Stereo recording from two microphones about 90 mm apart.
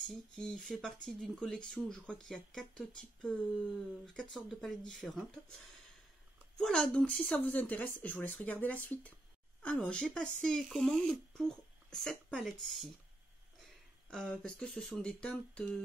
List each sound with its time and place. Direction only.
0.1 s speech: 5° left (ahead or behind)
14.4 s speech: 10° left (ahead or behind)